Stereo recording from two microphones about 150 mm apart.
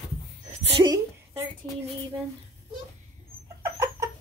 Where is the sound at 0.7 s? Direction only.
25° right (ahead or behind).